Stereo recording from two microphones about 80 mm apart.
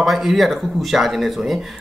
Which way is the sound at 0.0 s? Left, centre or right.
Centre.